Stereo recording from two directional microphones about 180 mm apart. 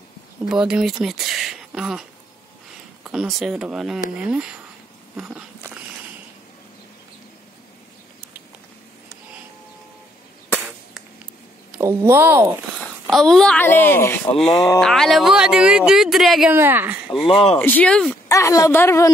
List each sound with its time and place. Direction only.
0.5 s speech: 5° right (ahead or behind)
5.1 s biting: 10° right (ahead or behind)
11.8 s speech: 15° right (ahead or behind)
13.0 s a woman's voice: centre (ahead or behind)
14.3 s speech: centre (ahead or behind)
17.3 s speech: 30° left (ahead or behind)
17.6 s a woman's voice: 10° left (ahead or behind)
18.3 s a woman's voice: 20° left (ahead or behind)